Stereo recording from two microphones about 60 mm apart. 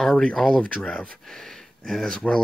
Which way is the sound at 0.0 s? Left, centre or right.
Centre.